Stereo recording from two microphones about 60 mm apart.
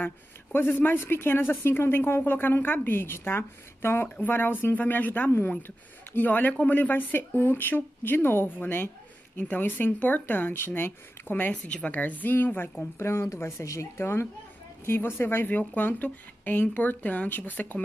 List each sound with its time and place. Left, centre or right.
0.0 s a woman's voice: left
11.6 s a woman's voice: left
13.0 s a woman's voice: left